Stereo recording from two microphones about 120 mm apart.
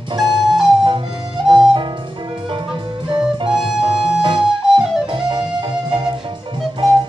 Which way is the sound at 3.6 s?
5° right (ahead or behind).